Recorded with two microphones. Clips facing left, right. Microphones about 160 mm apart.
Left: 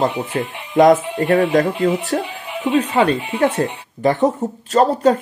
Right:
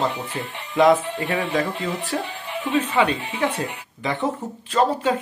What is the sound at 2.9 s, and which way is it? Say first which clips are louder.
Speech: left 4 dB; 40° left (ahead or behind).